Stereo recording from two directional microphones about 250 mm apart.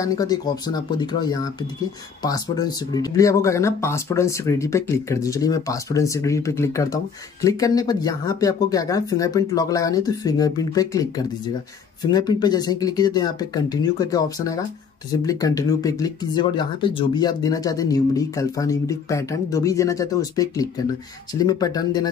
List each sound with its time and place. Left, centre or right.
0.0 s speech: centre